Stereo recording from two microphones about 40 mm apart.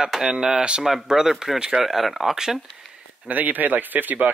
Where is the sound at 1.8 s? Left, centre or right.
Centre.